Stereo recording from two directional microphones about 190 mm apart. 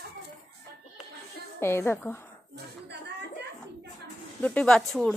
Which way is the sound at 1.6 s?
10° left (ahead or behind).